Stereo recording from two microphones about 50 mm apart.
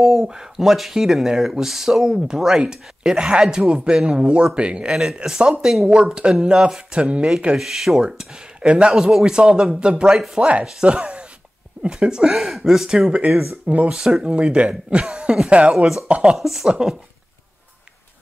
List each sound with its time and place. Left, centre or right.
0.0 s speech: centre
6.4 s speech: centre
12.4 s speech: centre
16.3 s speech: centre
16.6 s speech: centre